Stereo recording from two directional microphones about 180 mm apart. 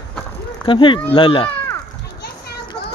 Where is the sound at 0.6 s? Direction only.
25° left (ahead or behind).